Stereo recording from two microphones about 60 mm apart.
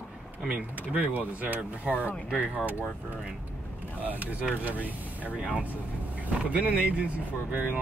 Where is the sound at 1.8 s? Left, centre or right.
Left.